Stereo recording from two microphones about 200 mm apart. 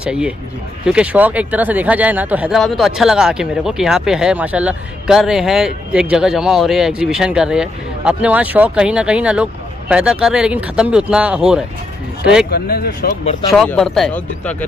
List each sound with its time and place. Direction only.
0.0 s speech: 5° right (ahead or behind)
12.4 s speech: 50° left (ahead or behind)
13.2 s speech: 30° left (ahead or behind)
13.5 s speech: centre (ahead or behind)